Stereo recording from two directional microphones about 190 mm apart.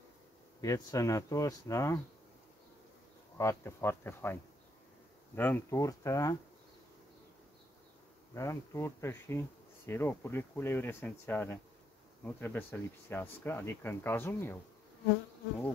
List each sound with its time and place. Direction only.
0.6 s speech: 15° left (ahead or behind)
3.3 s speech: 15° left (ahead or behind)
8.4 s speech: 15° left (ahead or behind)